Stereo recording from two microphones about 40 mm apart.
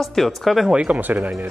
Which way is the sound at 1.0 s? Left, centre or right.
Right.